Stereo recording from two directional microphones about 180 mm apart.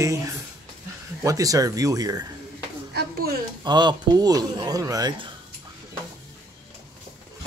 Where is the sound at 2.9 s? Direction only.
60° right (ahead or behind).